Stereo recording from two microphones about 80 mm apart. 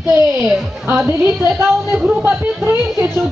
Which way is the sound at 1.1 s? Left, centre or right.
Right.